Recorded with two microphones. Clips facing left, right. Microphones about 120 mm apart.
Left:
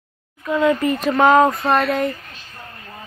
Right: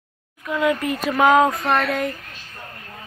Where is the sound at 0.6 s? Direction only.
5° right (ahead or behind).